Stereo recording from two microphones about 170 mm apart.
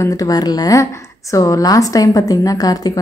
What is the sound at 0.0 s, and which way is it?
A woman's voice, 20° left (ahead or behind).